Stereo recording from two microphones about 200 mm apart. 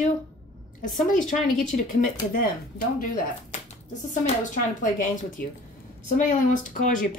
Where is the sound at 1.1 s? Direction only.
40° left (ahead or behind).